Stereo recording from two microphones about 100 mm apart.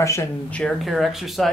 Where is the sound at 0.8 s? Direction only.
Centre (ahead or behind).